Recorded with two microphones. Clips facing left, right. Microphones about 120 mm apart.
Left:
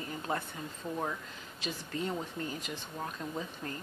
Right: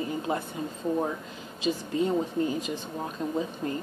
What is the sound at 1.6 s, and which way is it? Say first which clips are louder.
A woman's voice: right 10 dB; 20° right (ahead or behind).